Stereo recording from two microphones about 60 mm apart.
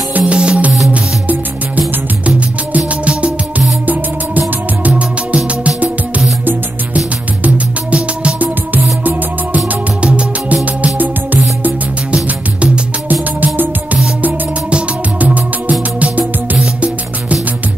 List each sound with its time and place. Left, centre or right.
0.1 s music: centre
7.4 s music: right
10.0 s music: right